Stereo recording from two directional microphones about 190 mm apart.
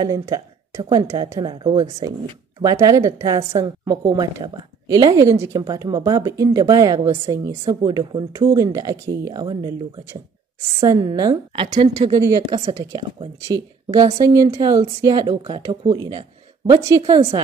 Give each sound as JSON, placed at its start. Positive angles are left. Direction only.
{"t": 0.0, "sound": "a woman's voice", "side_deg": -20}
{"t": 10.8, "sound": "speech", "side_deg": -20}
{"t": 13.5, "sound": "speech", "side_deg": -20}